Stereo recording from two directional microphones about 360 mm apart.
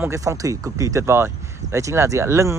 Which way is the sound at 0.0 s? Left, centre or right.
Centre.